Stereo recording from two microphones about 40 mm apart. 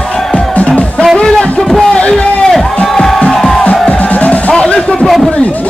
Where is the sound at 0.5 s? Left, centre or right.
Left.